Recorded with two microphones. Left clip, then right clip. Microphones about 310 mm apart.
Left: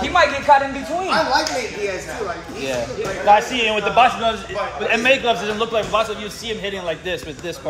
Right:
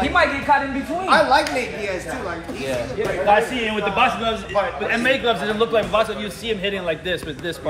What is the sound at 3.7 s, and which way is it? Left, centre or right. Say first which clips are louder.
Speech: left 4 dB; left.